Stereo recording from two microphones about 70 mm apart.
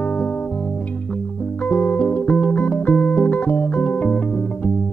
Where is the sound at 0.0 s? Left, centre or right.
Left.